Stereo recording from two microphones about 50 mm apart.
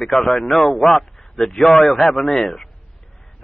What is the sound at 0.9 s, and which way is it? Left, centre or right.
Speech, left.